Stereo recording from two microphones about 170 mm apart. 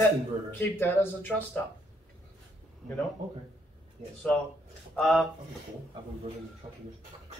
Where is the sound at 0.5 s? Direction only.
10° left (ahead or behind).